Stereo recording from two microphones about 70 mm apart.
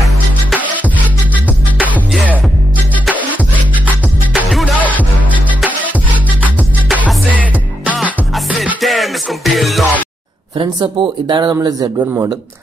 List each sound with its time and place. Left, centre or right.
4.7 s music: left
7.3 s music: right
8.8 s music: centre
10.8 s speech: right